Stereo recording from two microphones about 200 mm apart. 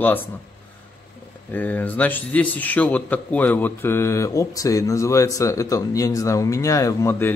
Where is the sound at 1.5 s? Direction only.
10° left (ahead or behind).